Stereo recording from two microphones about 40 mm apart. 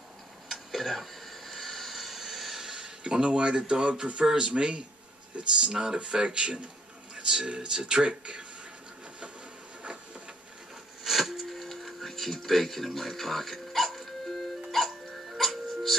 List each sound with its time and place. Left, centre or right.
0.5 s a sound: centre
2.7 s speech: right
11.1 s music: centre